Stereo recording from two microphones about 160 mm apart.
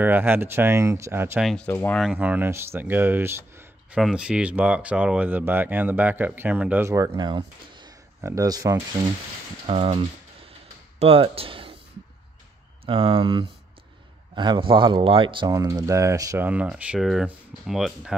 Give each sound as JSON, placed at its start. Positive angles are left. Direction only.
{"t": 0.0, "sound": "speech", "side_deg": -15}
{"t": 1.4, "sound": "speech", "side_deg": 0}
{"t": 2.0, "sound": "speech", "side_deg": -5}
{"t": 3.9, "sound": "speech", "side_deg": -5}
{"t": 7.1, "sound": "speech", "side_deg": -30}
{"t": 9.7, "sound": "speech", "side_deg": -35}
{"t": 11.0, "sound": "speech", "side_deg": -35}
{"t": 12.8, "sound": "speech", "side_deg": -35}
{"t": 15.5, "sound": "speech", "side_deg": -20}